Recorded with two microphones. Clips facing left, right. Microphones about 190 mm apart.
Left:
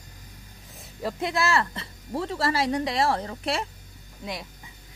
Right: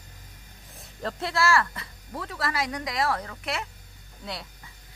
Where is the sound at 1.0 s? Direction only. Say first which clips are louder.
Even; 20° left (ahead or behind).